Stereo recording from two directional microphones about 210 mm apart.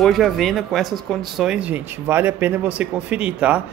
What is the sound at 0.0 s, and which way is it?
Speech, centre (ahead or behind).